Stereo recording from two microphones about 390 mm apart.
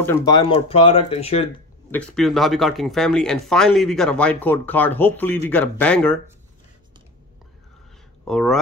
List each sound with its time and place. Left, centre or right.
0.0 s speech: centre
1.9 s speech: centre
8.3 s speech: centre